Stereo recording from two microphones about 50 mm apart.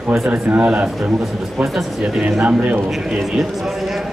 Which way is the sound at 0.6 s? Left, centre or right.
Right.